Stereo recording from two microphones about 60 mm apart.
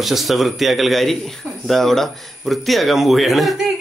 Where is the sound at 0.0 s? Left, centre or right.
Centre.